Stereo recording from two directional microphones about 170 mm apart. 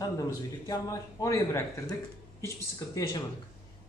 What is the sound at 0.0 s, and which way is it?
A man's voice, 20° left (ahead or behind).